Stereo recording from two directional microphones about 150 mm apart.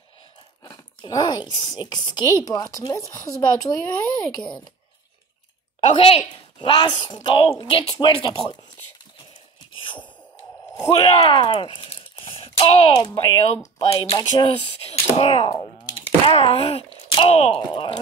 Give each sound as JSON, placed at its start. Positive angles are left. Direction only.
{"t": 0.7, "sound": "speech", "side_deg": 25}
{"t": 5.9, "sound": "a woman's voice", "side_deg": 45}
{"t": 6.7, "sound": "a woman's voice", "side_deg": 30}
{"t": 10.8, "sound": "speech", "side_deg": 20}
{"t": 11.1, "sound": "a woman's voice", "side_deg": 35}
{"t": 16.0, "sound": "speech", "side_deg": 40}